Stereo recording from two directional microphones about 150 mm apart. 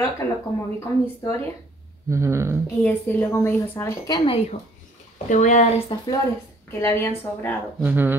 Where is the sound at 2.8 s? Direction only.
15° left (ahead or behind).